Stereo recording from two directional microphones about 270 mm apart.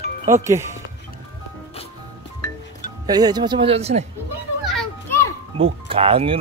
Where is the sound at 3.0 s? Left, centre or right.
Centre.